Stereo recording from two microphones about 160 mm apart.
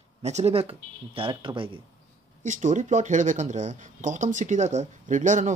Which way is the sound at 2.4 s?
50° right (ahead or behind).